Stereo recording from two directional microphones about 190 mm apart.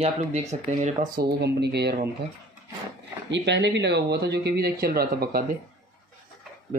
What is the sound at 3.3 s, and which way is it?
Speech, 65° right (ahead or behind).